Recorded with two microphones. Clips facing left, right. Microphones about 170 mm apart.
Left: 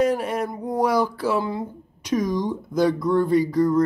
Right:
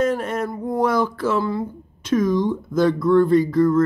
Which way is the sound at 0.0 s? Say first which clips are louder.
Even; 15° left (ahead or behind).